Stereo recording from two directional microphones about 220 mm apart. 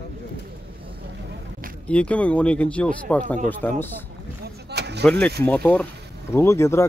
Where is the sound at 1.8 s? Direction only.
5° left (ahead or behind).